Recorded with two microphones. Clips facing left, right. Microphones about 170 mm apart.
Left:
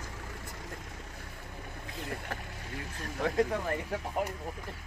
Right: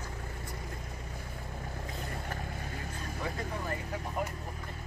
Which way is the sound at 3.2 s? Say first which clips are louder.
Left 7 dB; 80° left.